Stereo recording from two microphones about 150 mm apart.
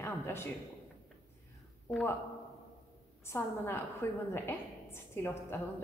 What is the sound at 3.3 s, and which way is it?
A woman's voice, 15° left (ahead or behind).